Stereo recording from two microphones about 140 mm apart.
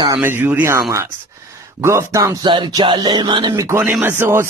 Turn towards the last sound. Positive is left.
turn(degrees=-15)  # may be behind; listen again after turning